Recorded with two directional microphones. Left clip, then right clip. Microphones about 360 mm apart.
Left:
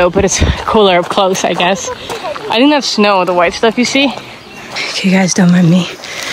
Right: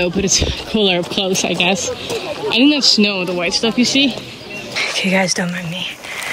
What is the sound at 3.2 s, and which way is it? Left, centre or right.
Speech, centre.